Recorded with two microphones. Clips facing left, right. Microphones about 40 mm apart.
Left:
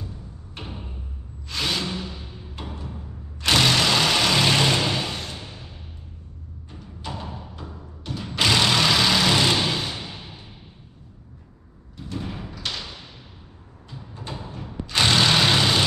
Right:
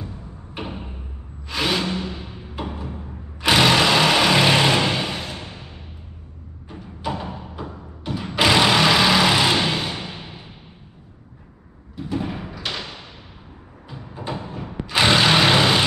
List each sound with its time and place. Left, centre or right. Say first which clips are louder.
0.0 s music: right 3 dB; right
1.5 s a sound: right 4 dB; centre
2.5 s music: right 6 dB; centre
3.3 s vehicle: right 4 dB; centre
6.7 s music: right 7 dB; centre
9.9 s a sound: right 3 dB; right
12.0 s thump: right 6 dB; centre
13.9 s a sound: right 6 dB; right
14.9 s vehicle: right 3 dB; centre